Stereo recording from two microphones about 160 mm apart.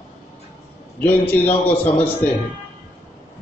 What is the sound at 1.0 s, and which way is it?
Speech, 10° left (ahead or behind).